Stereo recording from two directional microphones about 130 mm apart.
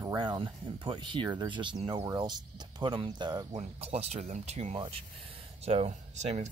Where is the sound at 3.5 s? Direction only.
55° right (ahead or behind).